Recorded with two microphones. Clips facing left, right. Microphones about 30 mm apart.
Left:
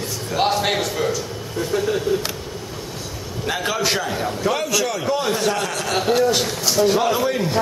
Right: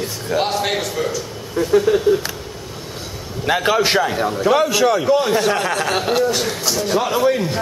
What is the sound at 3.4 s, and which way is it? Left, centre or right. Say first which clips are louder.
A man's voice: right 6 dB; centre.